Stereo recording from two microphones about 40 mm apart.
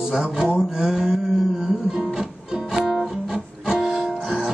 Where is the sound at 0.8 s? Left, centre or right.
Centre.